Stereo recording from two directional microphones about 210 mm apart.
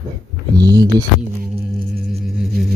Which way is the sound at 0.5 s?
20° right (ahead or behind).